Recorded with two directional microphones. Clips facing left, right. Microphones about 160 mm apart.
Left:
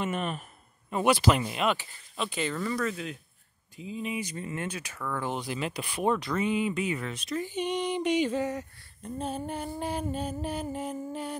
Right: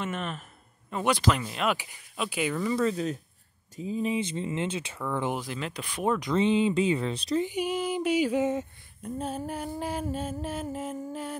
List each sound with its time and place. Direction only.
0.0 s speech: 10° left (ahead or behind)
1.7 s speech: 10° right (ahead or behind)
2.7 s speech: 30° right (ahead or behind)
5.3 s a sound: centre (ahead or behind)
6.3 s speech: 25° right (ahead or behind)
7.4 s speech: 10° right (ahead or behind)
8.4 s speech: 25° right (ahead or behind)
9.0 s a sound: 5° right (ahead or behind)